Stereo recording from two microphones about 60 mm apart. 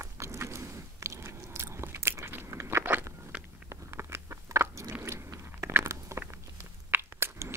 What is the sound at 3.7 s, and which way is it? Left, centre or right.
Biting, right.